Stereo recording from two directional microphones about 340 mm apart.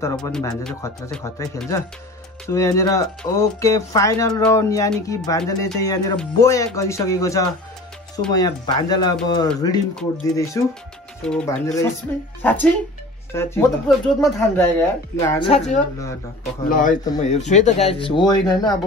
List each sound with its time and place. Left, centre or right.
0.0 s a man's voice: centre